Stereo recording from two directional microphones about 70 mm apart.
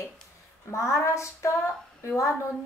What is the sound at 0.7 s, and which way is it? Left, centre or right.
A woman's voice, left.